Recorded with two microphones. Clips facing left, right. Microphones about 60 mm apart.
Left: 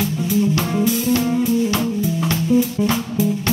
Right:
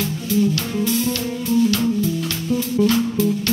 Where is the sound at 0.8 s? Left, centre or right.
Centre.